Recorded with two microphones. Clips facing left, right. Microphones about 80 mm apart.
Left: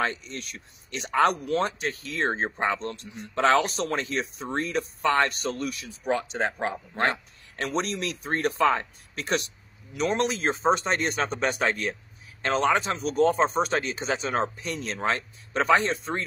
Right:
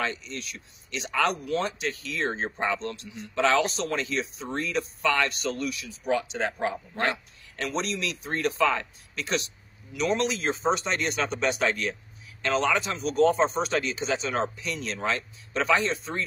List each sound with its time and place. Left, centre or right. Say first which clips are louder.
0.0 s speech: left 2 dB; left